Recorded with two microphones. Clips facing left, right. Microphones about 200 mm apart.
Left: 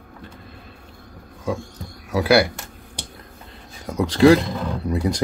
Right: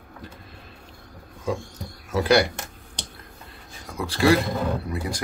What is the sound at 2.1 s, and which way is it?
Speech, 5° left (ahead or behind).